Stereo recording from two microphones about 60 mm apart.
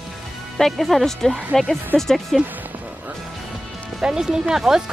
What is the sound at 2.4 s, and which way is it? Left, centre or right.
Music, right.